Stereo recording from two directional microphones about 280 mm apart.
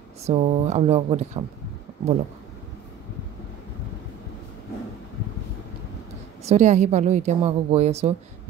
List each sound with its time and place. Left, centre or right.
0.2 s a woman's voice: right
6.4 s a woman's voice: right